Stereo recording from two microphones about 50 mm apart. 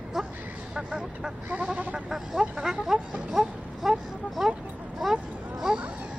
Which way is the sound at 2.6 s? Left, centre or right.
Centre.